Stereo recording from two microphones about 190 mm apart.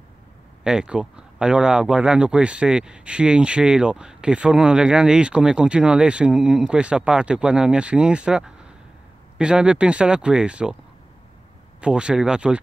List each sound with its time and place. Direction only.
0.7 s speech: 5° right (ahead or behind)
11.8 s speech: 5° right (ahead or behind)